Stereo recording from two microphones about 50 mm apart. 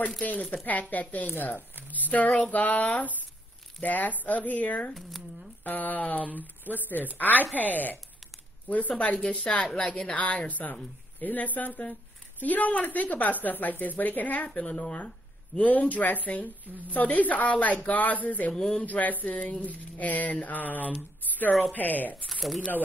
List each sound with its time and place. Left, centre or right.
0.2 s speech: left
1.9 s a sound: left
2.5 s speech: left
14.5 s speech: left
18.5 s speech: centre
18.8 s speech: left
22.2 s speech: centre